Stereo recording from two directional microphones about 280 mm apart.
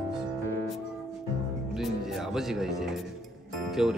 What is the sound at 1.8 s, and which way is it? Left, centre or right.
Music, centre.